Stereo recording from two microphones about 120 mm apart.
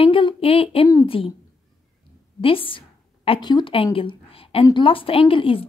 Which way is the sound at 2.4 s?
50° left (ahead or behind).